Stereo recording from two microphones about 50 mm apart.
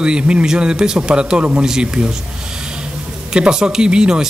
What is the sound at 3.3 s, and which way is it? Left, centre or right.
Speech, centre.